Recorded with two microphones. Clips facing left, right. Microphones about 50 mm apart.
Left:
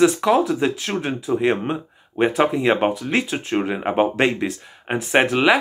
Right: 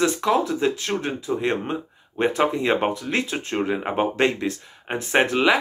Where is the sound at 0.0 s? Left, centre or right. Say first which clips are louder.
Left 4 dB; left.